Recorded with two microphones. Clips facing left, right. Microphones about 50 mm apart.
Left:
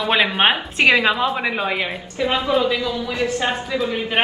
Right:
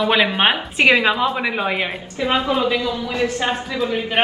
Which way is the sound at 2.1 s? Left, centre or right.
Right.